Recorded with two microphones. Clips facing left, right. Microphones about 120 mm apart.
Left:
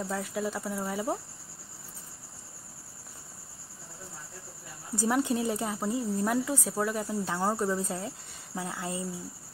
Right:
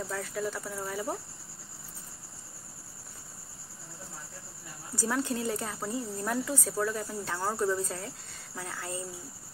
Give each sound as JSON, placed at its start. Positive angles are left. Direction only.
{"t": 0.0, "sound": "speech", "side_deg": 15}
{"t": 4.9, "sound": "speech", "side_deg": 20}